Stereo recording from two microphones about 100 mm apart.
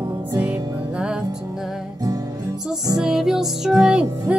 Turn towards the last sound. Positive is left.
turn(degrees=-10)  # may be behind; listen again after turning